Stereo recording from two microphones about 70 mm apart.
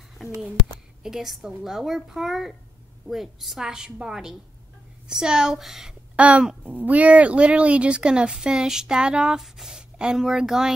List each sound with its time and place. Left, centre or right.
0.2 s a child's voice: centre
6.1 s speech: centre